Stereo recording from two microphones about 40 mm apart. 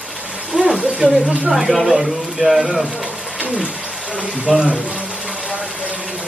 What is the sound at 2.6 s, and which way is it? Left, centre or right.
Speech, centre.